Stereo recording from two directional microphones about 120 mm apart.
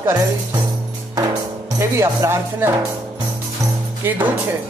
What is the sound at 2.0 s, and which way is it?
Speech, 25° right (ahead or behind).